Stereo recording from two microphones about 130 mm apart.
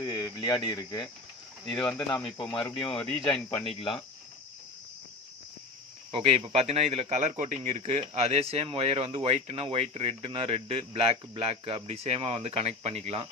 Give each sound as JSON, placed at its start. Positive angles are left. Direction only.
{"t": 0.0, "sound": "speech", "side_deg": 35}
{"t": 1.7, "sound": "speech", "side_deg": 5}
{"t": 2.2, "sound": "speech", "side_deg": 35}
{"t": 6.1, "sound": "a man's voice", "side_deg": -45}